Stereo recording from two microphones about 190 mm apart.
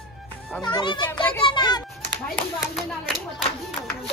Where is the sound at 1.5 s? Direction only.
20° left (ahead or behind).